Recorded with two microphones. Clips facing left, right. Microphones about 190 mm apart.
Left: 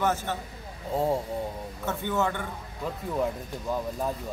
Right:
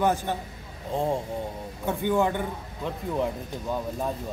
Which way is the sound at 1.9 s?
15° right (ahead or behind).